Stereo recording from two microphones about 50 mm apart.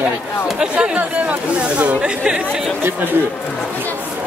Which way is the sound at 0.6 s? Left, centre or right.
Centre.